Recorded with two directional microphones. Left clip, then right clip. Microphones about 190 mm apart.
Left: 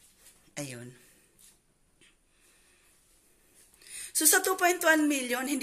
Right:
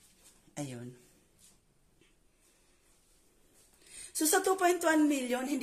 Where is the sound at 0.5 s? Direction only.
15° right (ahead or behind).